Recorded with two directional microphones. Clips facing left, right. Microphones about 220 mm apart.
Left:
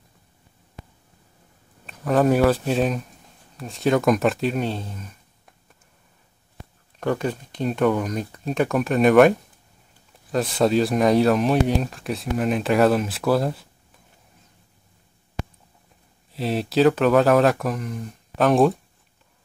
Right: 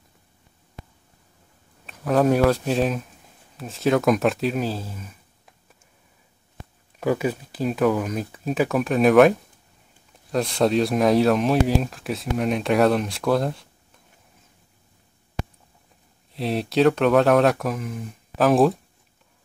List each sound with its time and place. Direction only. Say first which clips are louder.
1.9 s speech: even; centre (ahead or behind)
7.0 s speech: right 1 dB; 5° right (ahead or behind)
16.3 s speech: even; centre (ahead or behind)